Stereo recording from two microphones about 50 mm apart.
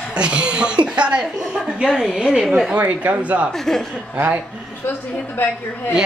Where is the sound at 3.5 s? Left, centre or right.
Centre.